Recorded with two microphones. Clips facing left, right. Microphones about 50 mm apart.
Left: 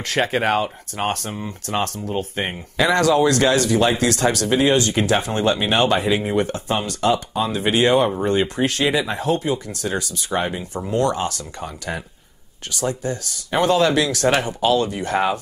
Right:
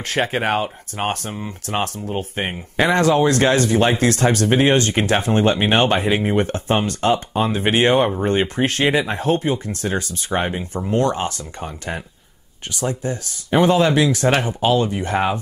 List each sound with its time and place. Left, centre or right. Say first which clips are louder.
0.0 s speech: left 1 dB; centre
1.4 s speech: even; right; by 15.3 s centre